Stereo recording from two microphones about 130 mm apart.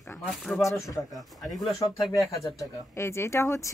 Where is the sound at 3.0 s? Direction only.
20° left (ahead or behind).